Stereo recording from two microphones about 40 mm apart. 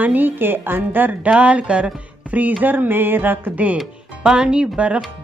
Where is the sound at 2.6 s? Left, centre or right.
Right.